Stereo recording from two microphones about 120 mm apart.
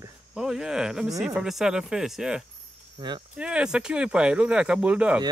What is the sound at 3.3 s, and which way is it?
Speech, 10° right (ahead or behind).